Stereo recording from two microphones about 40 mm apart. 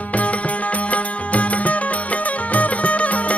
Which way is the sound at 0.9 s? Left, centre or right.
Left.